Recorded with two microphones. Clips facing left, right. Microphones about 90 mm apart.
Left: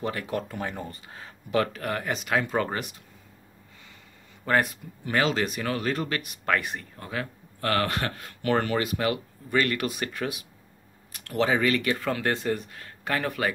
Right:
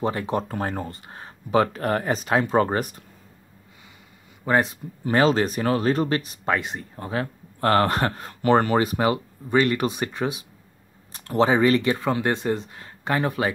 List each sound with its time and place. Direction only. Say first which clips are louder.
0.0 s speech: right 5 dB; 25° right (ahead or behind)
1.1 s speech: right 5 dB; 25° right (ahead or behind)
4.5 s speech: right 3 dB; 25° right (ahead or behind)
6.5 s speech: right 2 dB; 20° right (ahead or behind)